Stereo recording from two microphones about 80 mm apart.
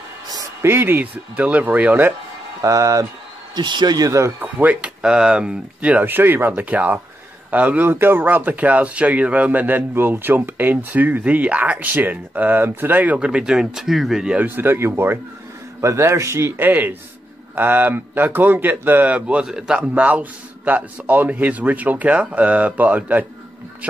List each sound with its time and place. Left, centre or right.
0.6 s speech: right
2.6 s speech: right
3.5 s speech: right
4.4 s speech: right
14.4 s a man's voice: right; by 19.9 s centre
19.9 s speech: centre